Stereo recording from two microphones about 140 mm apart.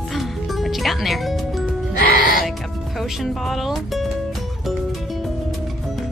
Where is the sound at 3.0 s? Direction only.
Centre (ahead or behind).